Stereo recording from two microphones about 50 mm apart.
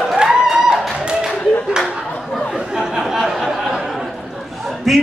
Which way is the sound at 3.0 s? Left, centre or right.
Centre.